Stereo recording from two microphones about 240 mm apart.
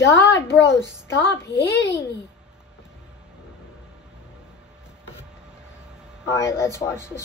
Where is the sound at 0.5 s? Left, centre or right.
Centre.